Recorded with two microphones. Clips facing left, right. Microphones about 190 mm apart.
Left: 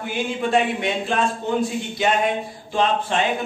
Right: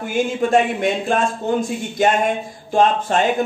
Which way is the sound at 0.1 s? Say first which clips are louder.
Right 4 dB; 45° right (ahead or behind).